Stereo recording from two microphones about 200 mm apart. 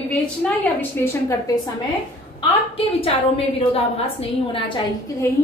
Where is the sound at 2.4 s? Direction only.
30° left (ahead or behind).